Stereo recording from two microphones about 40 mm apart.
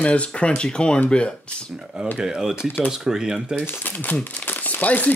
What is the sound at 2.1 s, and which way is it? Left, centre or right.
Speech, centre.